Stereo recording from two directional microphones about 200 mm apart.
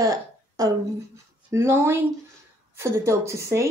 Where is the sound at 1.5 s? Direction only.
15° right (ahead or behind).